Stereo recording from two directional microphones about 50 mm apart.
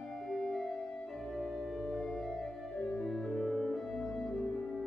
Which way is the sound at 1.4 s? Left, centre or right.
Centre.